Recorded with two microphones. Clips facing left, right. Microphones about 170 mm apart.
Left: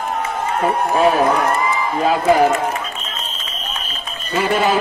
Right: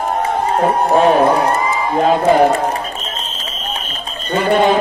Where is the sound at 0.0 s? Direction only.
40° right (ahead or behind).